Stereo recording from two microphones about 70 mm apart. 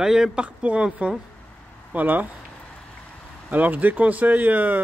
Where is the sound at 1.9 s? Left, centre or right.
Right.